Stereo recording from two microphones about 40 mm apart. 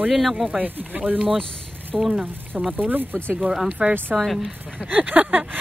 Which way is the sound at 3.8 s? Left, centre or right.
Right.